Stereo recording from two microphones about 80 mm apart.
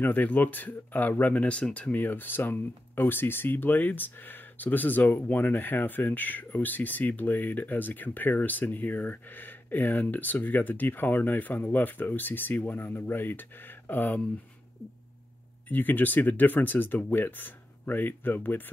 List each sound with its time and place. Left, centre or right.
0.0 s speech: left
15.7 s speech: left